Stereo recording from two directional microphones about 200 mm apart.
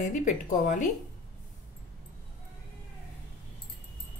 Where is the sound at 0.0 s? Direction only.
40° left (ahead or behind).